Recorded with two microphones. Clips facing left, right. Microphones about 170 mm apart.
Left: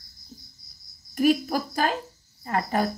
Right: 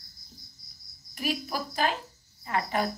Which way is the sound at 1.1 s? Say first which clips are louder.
Left 10 dB; 45° left (ahead or behind).